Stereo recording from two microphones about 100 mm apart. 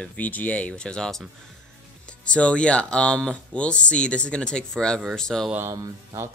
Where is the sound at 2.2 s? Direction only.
10° left (ahead or behind).